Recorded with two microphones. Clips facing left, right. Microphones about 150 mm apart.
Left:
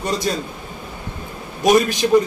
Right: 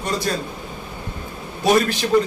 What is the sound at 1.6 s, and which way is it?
Speech, 15° left (ahead or behind).